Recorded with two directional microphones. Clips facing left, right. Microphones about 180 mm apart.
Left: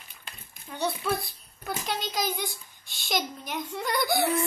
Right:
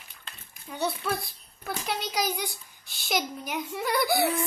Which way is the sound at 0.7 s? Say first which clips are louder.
Left 1 dB; centre (ahead or behind).